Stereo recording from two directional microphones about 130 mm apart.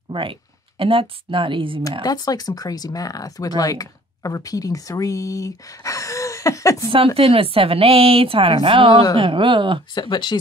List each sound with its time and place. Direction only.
0.1 s speech: 45° right (ahead or behind)
2.0 s speech: 30° left (ahead or behind)
7.2 s a woman's voice: 45° right (ahead or behind)
9.9 s speech: 35° left (ahead or behind)